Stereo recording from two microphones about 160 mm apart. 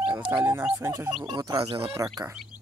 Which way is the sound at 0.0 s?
10° right (ahead or behind).